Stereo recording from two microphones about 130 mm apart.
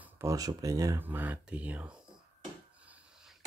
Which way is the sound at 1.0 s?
15° right (ahead or behind).